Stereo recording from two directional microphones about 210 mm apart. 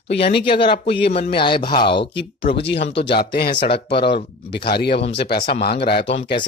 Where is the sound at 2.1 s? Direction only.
55° left (ahead or behind).